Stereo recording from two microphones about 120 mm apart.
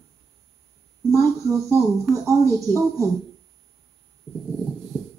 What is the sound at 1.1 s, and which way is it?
Speech, 25° right (ahead or behind).